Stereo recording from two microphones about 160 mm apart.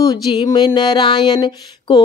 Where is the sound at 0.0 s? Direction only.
25° left (ahead or behind).